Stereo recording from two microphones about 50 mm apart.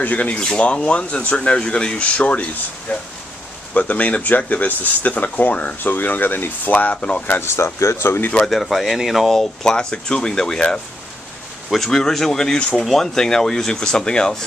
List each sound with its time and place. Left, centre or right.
0.0 s speech: left
0.4 s speech: left
5.8 s speech: left
7.0 s speech: left
7.4 s speech: left
8.0 s speech: left
8.5 s speech: centre
9.3 s speech: centre